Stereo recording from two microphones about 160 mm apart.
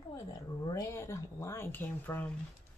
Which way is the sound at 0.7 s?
15° left (ahead or behind).